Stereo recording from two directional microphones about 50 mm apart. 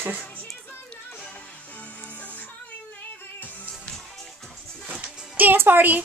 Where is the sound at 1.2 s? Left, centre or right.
Left.